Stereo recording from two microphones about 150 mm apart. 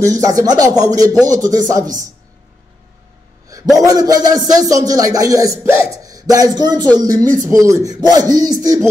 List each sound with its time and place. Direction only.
0.0 s a man's voice: 25° right (ahead or behind)
3.7 s a man's voice: 25° right (ahead or behind)